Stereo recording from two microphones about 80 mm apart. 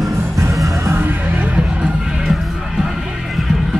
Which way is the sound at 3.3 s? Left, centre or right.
Centre.